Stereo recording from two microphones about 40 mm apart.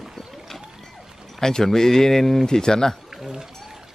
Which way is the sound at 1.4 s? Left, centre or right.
Centre.